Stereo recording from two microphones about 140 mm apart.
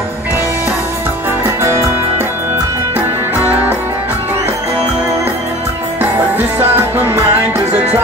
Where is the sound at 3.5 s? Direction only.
10° right (ahead or behind).